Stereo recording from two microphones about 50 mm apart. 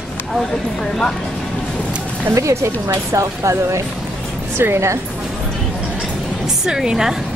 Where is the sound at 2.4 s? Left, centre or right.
Right.